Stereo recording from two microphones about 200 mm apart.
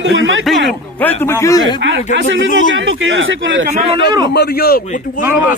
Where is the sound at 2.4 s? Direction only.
75° right (ahead or behind).